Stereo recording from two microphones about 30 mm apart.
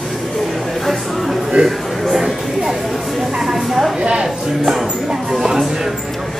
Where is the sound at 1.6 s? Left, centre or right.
Centre.